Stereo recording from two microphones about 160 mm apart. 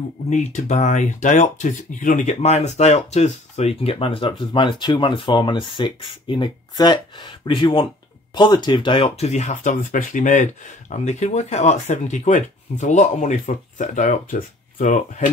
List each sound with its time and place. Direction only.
0.3 s speech: 45° left (ahead or behind)